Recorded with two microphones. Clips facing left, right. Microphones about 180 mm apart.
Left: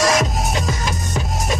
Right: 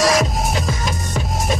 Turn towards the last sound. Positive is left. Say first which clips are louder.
# right 1 dB
turn(degrees=0)  # may be behind; listen again after turning